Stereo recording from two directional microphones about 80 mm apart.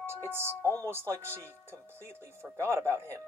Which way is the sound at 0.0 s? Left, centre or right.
Right.